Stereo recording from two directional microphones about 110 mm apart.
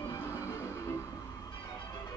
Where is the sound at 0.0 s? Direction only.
25° left (ahead or behind).